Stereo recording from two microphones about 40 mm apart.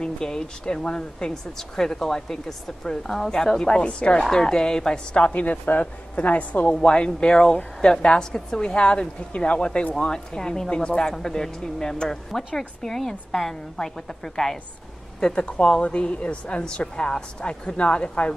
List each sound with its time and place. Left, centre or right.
0.0 s a woman's voice: centre
1.6 s a woman's voice: centre; by 4.2 s left
4.3 s speech: centre
5.3 s a woman's voice: left
6.8 s a woman's voice: left; by 14.6 s centre
15.1 s a woman's voice: left